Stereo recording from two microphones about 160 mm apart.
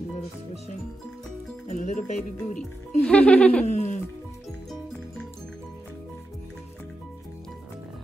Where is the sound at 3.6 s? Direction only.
45° left (ahead or behind).